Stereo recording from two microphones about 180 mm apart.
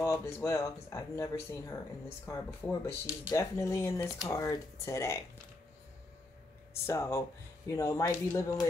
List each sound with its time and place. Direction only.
0.0 s speech: 15° left (ahead or behind)
6.7 s speech: 15° left (ahead or behind)